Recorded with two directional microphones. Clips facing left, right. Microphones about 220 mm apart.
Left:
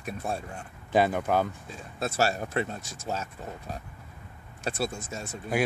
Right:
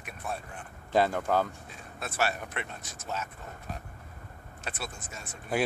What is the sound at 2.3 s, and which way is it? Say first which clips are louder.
Speech: left 8 dB; 35° left (ahead or behind).